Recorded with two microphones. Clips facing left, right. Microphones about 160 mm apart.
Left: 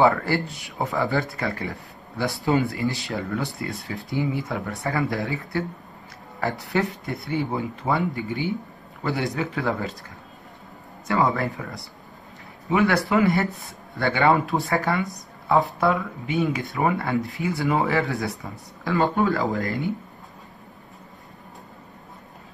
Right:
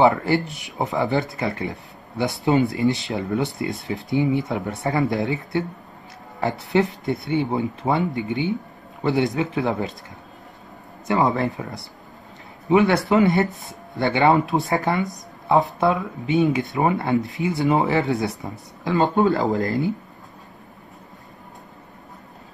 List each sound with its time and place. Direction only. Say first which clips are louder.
0.0 s speech: right 2 dB; 20° right (ahead or behind)
6.7 s speech: right 7 dB; 20° right (ahead or behind)
11.1 s speech: right 2 dB; 20° right (ahead or behind)
12.6 s speech: right 4 dB; 25° right (ahead or behind)